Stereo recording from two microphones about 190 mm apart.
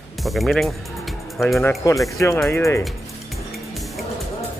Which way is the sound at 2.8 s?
Centre (ahead or behind).